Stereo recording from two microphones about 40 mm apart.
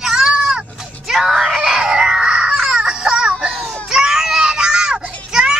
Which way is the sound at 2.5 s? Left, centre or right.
Centre.